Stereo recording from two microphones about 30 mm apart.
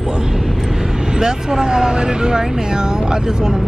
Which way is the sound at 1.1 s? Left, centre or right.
Right.